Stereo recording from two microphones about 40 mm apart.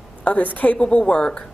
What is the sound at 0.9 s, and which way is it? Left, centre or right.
Speech, left.